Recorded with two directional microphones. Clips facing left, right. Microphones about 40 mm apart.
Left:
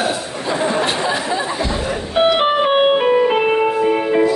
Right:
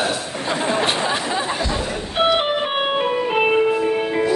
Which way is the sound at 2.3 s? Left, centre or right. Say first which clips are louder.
Left 6 dB; centre.